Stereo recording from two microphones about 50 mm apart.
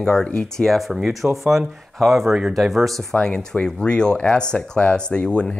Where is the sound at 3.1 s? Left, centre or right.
Centre.